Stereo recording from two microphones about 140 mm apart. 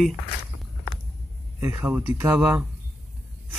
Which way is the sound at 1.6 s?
20° right (ahead or behind).